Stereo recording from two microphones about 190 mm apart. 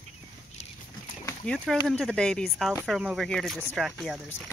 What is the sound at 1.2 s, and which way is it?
Speech, 5° left (ahead or behind).